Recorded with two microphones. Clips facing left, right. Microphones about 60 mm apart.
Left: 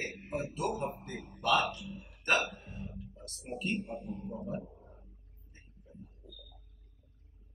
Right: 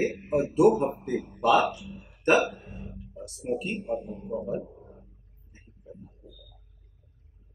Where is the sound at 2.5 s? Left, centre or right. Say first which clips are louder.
Right 4 dB; centre.